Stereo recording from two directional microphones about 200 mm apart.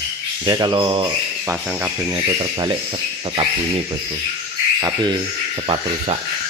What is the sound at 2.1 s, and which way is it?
Speech, 25° right (ahead or behind).